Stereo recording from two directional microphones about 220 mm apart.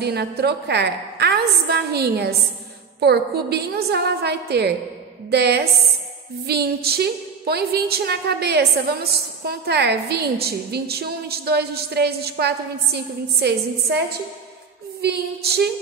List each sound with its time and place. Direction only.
0.0 s a woman's voice: 50° right (ahead or behind)